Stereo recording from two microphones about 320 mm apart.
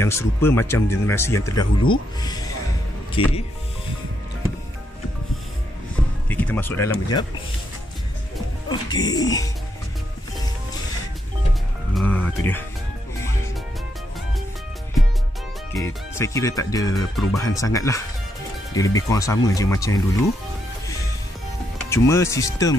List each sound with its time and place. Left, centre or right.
0.0 s speech: centre
3.2 s speech: centre
6.2 s speech: centre
8.6 s speech: centre
11.9 s music: centre
15.7 s speech: centre
21.7 s speech: centre